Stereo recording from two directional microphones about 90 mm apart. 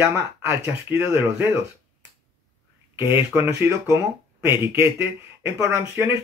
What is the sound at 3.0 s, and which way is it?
Speech, 25° right (ahead or behind).